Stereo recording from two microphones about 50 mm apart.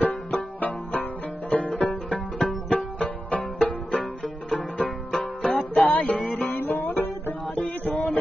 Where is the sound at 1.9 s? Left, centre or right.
Centre.